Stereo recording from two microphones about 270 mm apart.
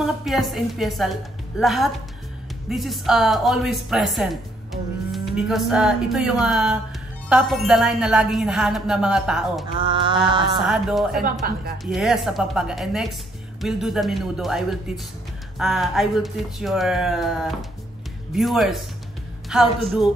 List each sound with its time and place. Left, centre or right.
0.0 s a woman's voice: centre
5.1 s a sound: centre
5.7 s speech: centre
9.8 s mantra: centre
10.6 s speech: centre
11.4 s a woman's voice: right
11.8 s speech: centre